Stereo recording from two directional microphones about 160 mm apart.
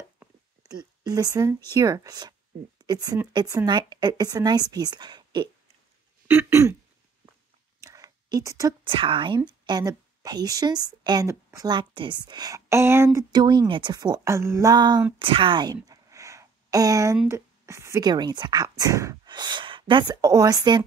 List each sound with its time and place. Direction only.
0.7 s a woman's voice: 25° right (ahead or behind)
6.2 s throat clearing: 15° right (ahead or behind)
7.8 s a sound: 20° right (ahead or behind)
8.8 s a woman's voice: 35° right (ahead or behind)
15.1 s a sound: 35° right (ahead or behind)
17.3 s speech: 15° right (ahead or behind)